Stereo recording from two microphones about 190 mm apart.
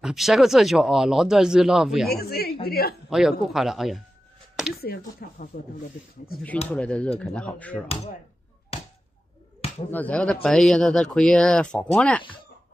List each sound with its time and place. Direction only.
0.0 s speech: centre (ahead or behind)
2.0 s speech: 55° left (ahead or behind)
3.1 s speech: centre (ahead or behind)
4.8 s speech: 50° left (ahead or behind)
6.7 s speech: 5° left (ahead or behind)
9.8 s speech: 10° left (ahead or behind)